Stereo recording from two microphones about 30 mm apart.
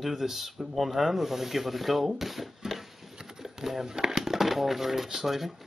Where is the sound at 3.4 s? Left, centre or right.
Centre.